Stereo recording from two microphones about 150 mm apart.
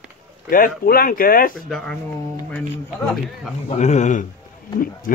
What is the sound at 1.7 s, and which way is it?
Speech, 5° left (ahead or behind).